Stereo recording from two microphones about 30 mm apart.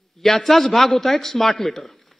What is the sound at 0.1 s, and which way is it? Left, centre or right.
A man's voice, centre.